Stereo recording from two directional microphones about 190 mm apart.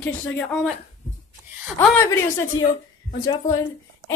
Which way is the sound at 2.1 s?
15° left (ahead or behind).